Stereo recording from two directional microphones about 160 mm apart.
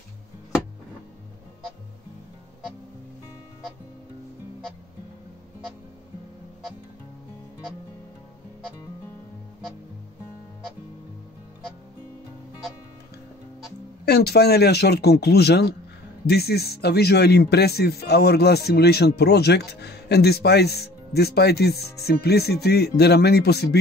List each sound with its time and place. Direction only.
14.0 s speech: 90° left